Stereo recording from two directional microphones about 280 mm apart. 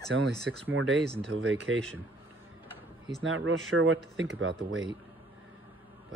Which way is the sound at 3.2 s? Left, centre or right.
Right.